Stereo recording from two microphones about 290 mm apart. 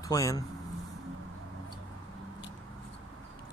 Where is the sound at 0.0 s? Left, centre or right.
Centre.